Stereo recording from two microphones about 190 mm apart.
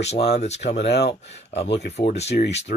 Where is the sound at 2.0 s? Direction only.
35° left (ahead or behind).